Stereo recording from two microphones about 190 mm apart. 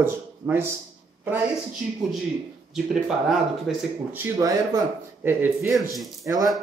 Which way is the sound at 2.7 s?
Centre (ahead or behind).